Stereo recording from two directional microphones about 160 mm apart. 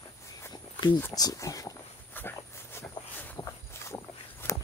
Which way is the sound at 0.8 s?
15° left (ahead or behind).